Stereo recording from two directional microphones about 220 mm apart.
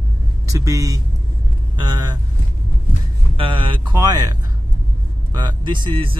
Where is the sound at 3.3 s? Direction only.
20° right (ahead or behind).